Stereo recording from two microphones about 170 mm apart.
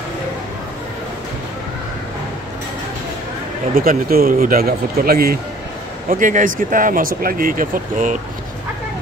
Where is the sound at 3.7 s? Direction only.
60° right (ahead or behind).